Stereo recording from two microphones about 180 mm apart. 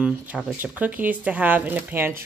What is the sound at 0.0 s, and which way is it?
Speech, 5° right (ahead or behind).